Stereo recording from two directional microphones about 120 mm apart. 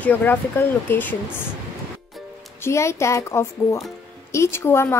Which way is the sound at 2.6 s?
25° left (ahead or behind).